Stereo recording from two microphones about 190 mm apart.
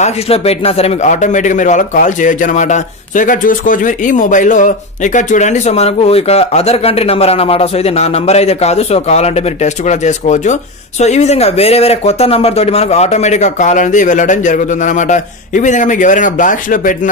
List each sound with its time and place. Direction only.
0.0 s speech: 30° left (ahead or behind)